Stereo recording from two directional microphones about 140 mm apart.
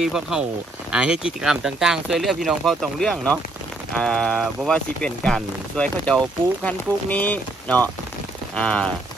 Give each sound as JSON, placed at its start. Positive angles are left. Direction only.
{"t": 0.0, "sound": "speech", "side_deg": -5}